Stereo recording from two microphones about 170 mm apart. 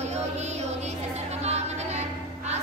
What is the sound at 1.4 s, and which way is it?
Music, 40° right (ahead or behind).